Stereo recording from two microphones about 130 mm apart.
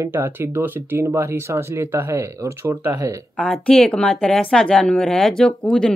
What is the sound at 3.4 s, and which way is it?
Speech, 5° left (ahead or behind).